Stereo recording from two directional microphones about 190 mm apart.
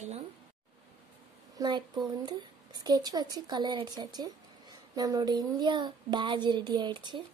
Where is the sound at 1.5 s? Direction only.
20° right (ahead or behind).